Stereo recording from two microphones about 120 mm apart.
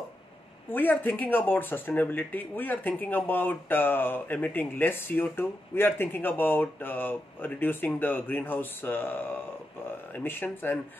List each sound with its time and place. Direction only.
0.7 s speech: 15° left (ahead or behind)